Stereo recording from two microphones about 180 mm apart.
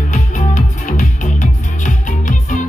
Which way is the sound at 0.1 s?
45° left (ahead or behind).